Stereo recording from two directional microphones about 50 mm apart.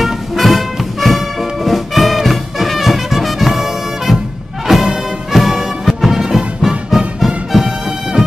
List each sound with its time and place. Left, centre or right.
0.0 s music: centre
4.7 s music: centre